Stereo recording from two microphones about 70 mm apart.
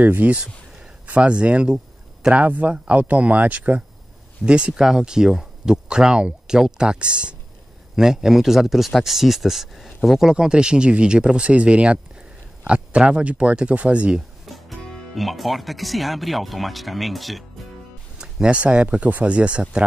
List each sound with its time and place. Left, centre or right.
0.0 s speech: right
14.4 s speech: centre
18.1 s speech: centre